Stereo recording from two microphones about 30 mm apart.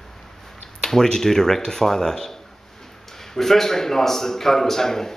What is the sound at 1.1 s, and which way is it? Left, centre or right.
A man's voice, centre.